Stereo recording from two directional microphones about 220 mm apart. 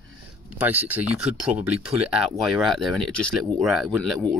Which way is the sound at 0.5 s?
5° right (ahead or behind).